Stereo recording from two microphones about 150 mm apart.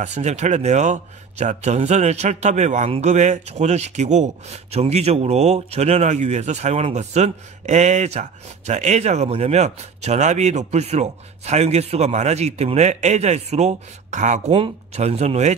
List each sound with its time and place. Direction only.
0.0 s speech: 50° right (ahead or behind)
14.5 s speech: 40° right (ahead or behind)